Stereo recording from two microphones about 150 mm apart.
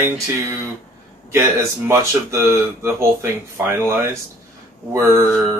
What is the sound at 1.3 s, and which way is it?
Speech, 20° right (ahead or behind).